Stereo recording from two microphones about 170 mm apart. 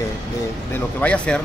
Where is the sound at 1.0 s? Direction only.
5° left (ahead or behind).